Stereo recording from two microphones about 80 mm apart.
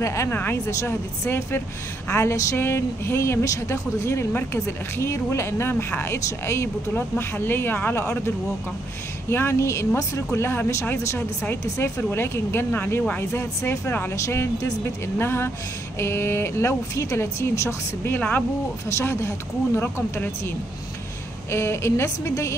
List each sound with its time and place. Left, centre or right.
0.0 s speech: left
0.3 s speech: left
2.0 s a sound: left
2.5 s speech: left
9.3 s speech: left
18.1 s speech: left
18.9 s speech: left
21.5 s speech: left